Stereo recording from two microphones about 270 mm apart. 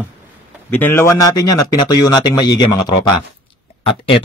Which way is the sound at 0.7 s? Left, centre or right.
Centre.